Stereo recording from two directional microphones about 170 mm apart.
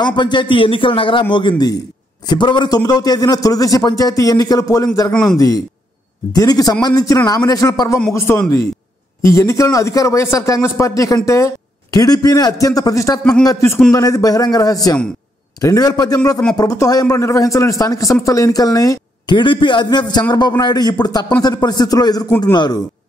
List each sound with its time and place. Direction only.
0.0 s a man's voice: 25° left (ahead or behind)
2.2 s a man's voice: 25° left (ahead or behind)
5.1 s speech: 5° left (ahead or behind)
6.3 s a man's voice: 20° left (ahead or behind)